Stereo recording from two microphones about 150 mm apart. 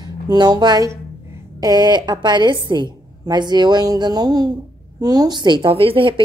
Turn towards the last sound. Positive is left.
turn(degrees=-35)  # may be behind; listen again after turning